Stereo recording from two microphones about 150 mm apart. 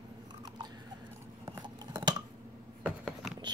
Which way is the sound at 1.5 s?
30° right (ahead or behind).